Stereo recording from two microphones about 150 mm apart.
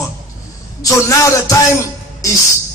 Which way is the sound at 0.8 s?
20° left (ahead or behind).